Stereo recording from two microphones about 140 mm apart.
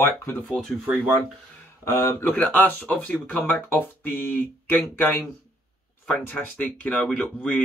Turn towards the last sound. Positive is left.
turn(degrees=10)  # may be behind; listen again after turning